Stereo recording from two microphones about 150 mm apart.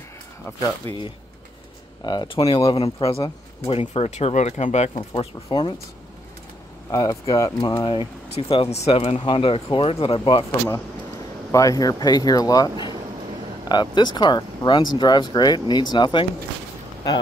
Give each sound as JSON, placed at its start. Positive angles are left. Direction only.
{"t": 0.8, "sound": "speech", "side_deg": -40}
{"t": 2.0, "sound": "speech", "side_deg": 30}
{"t": 6.9, "sound": "speech", "side_deg": 25}
{"t": 11.5, "sound": "speech", "side_deg": 25}